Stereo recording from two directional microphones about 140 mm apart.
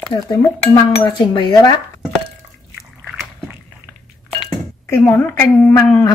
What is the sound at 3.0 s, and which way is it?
Dog, 15° right (ahead or behind).